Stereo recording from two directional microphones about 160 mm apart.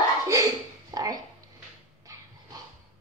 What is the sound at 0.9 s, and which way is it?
Speech, 20° right (ahead or behind).